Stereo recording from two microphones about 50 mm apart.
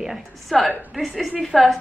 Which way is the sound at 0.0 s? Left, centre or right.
Centre.